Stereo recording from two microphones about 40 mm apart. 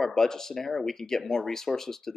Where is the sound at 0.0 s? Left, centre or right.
Centre.